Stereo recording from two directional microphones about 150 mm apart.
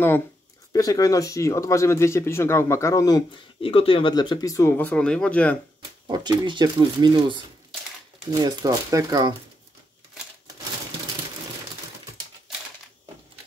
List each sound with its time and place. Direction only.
0.7 s speech: 25° left (ahead or behind); by 5.6 s 10° left (ahead or behind)
6.0 s speech: 25° right (ahead or behind)